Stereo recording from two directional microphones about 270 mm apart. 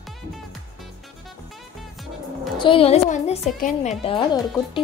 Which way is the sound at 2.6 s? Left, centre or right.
Centre.